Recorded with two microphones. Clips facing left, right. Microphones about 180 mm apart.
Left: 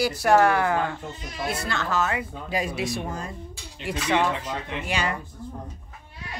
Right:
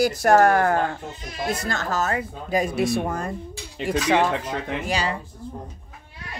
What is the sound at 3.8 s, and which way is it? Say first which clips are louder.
Speech: right 4 dB; 40° right (ahead or behind).